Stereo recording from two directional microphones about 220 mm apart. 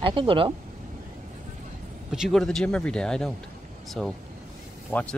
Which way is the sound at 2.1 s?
Centre (ahead or behind).